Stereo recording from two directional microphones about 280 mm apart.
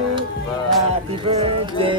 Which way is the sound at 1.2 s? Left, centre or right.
Right.